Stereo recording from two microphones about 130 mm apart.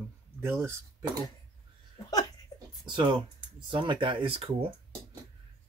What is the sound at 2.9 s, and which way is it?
Speech, 40° right (ahead or behind).